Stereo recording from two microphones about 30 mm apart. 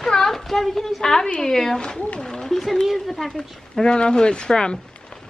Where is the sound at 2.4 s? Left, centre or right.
Centre.